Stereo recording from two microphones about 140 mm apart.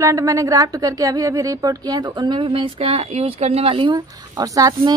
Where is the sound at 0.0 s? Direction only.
20° right (ahead or behind).